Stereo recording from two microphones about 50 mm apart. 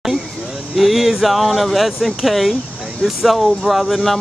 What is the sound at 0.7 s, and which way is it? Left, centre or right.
Speech, centre.